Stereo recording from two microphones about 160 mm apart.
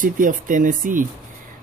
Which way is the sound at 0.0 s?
55° right (ahead or behind).